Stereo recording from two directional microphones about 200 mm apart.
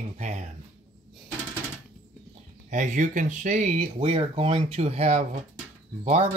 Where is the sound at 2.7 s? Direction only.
40° right (ahead or behind).